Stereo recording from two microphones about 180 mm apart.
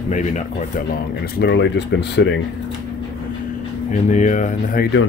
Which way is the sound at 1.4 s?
70° left (ahead or behind).